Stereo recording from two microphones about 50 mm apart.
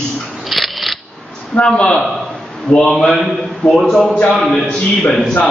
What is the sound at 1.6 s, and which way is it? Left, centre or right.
Speech, centre.